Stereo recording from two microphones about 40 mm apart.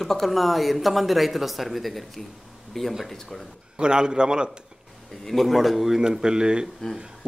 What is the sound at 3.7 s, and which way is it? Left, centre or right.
Speech, right.